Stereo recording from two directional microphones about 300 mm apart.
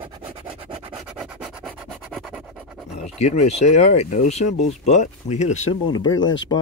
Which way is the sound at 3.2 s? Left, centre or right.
Left.